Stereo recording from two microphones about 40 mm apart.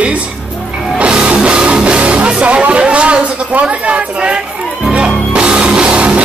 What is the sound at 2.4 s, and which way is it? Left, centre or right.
A woman's voice, right.